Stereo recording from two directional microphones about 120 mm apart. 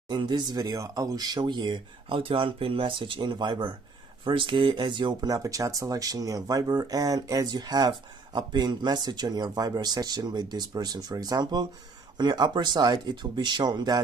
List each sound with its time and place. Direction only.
0.1 s speech: 40° right (ahead or behind)